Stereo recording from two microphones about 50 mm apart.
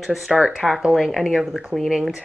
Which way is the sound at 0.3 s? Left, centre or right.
Centre.